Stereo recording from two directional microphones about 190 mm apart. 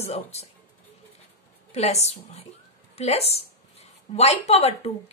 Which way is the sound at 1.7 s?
35° left (ahead or behind).